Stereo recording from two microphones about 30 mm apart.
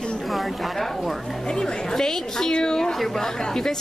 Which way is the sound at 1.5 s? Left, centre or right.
Left.